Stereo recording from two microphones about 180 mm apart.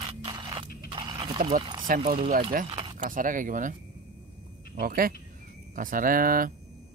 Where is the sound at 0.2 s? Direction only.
30° right (ahead or behind).